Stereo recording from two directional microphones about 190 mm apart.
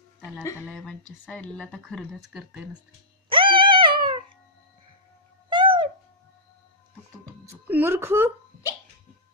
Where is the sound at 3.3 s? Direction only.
25° right (ahead or behind).